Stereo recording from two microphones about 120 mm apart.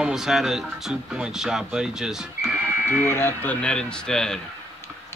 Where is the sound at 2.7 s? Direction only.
20° right (ahead or behind).